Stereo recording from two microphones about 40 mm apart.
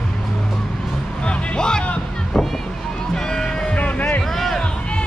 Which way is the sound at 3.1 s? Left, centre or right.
Centre.